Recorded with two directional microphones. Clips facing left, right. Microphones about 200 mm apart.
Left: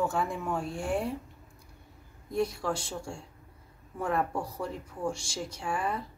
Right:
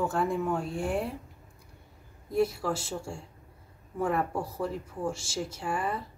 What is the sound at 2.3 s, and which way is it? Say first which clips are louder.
Speech: right 3 dB; 5° right (ahead or behind).